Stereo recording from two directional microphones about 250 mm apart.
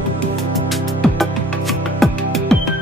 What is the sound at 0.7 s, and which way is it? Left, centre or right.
Music, centre.